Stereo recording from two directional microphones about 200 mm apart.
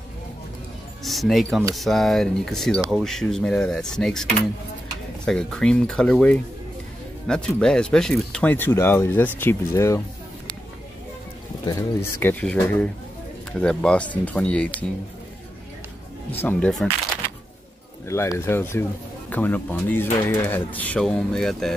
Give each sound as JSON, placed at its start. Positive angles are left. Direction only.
{"t": 1.0, "sound": "speech", "side_deg": 0}
{"t": 11.6, "sound": "speech", "side_deg": 15}
{"t": 16.3, "sound": "speech", "side_deg": 5}
{"t": 18.0, "sound": "speech", "side_deg": 15}